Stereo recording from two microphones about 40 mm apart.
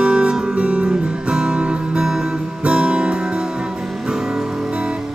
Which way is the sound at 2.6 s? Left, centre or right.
Right.